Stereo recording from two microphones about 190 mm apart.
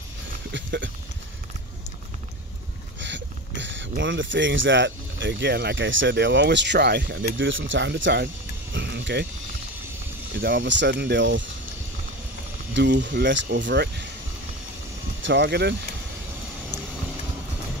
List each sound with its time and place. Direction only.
0.5 s speech: 70° right (ahead or behind)
3.0 s speech: 70° right (ahead or behind)
8.7 s a sound: 65° right (ahead or behind)
10.4 s speech: 65° right (ahead or behind)
12.7 s speech: 65° right (ahead or behind)
15.2 s speech: 65° right (ahead or behind)